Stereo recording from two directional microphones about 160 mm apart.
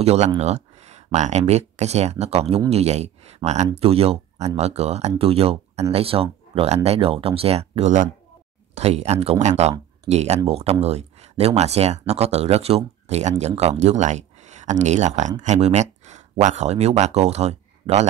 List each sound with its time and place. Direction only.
0.0 s speech: 40° right (ahead or behind)